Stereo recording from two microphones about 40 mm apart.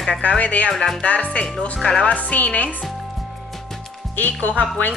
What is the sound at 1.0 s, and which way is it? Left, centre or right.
A woman's voice, left.